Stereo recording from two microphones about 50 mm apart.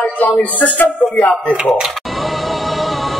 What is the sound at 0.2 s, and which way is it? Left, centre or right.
Music, left.